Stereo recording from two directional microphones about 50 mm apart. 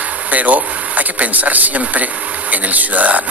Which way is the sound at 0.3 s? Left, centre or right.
Right.